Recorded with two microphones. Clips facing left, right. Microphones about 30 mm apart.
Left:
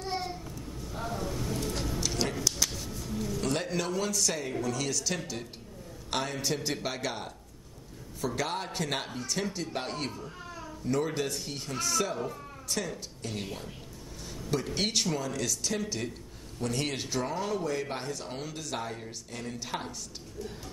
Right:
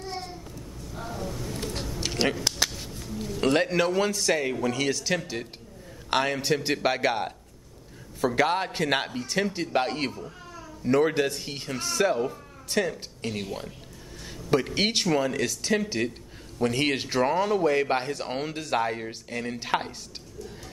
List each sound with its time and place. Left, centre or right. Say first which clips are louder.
0.9 s a sound: even; centre
2.2 s speech: right 8 dB; right
2.8 s a man's voice: even; right
6.0 s a woman's voice: right 7 dB; right
13.3 s speech: right 5 dB; right